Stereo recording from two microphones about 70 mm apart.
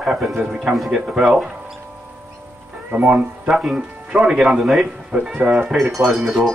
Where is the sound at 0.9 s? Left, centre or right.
Centre.